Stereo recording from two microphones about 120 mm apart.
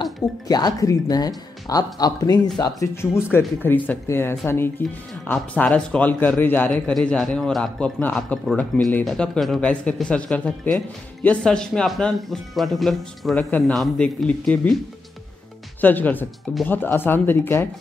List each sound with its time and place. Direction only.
0.0 s speech: 35° left (ahead or behind)
3.0 s speech: 20° left (ahead or behind)
15.8 s speech: 15° left (ahead or behind)